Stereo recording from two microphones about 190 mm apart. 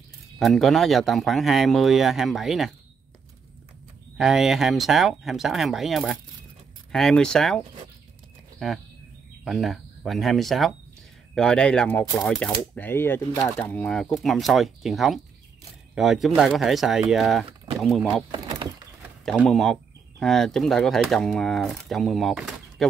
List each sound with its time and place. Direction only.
0.4 s speech: centre (ahead or behind)
4.2 s speech: centre (ahead or behind)
18.3 s a sound: 25° right (ahead or behind)
19.2 s speech: centre (ahead or behind)